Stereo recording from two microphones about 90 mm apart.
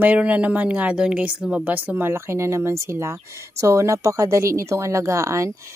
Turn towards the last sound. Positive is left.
turn(degrees=-35)  # may be behind; listen again after turning